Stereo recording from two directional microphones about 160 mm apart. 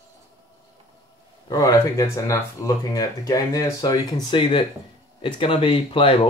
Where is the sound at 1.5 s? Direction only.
20° left (ahead or behind).